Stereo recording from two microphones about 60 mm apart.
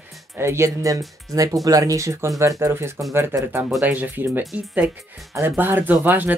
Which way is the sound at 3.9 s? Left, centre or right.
Right.